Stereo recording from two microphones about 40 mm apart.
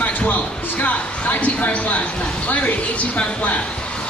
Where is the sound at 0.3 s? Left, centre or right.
Left.